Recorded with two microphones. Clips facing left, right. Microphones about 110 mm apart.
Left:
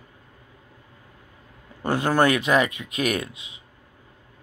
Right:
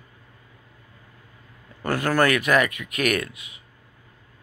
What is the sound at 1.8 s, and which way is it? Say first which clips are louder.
Speech: left 1 dB; 20° left (ahead or behind).